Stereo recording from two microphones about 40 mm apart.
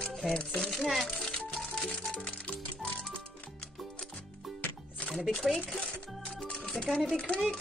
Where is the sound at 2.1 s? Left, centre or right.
Left.